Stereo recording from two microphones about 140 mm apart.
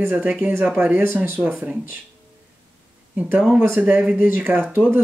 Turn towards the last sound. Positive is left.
turn(degrees=-15)  # may be behind; listen again after turning